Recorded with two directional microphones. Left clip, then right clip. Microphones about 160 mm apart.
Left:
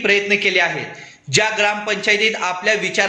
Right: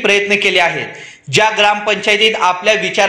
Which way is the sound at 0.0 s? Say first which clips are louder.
Right 4 dB; 15° right (ahead or behind).